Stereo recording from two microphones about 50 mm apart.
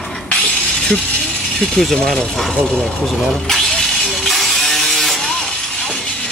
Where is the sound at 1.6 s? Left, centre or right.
Centre.